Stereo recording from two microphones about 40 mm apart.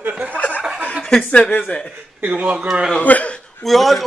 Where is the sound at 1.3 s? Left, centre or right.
Left.